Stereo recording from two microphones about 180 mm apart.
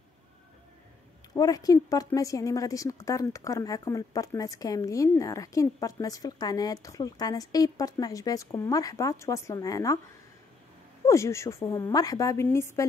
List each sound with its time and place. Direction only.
1.3 s speech: 20° left (ahead or behind)
11.1 s a woman's voice: 15° left (ahead or behind)